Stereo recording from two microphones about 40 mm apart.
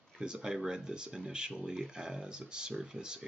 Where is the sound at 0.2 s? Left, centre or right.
Right.